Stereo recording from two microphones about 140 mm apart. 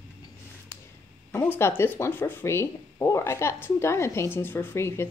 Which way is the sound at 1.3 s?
15° left (ahead or behind).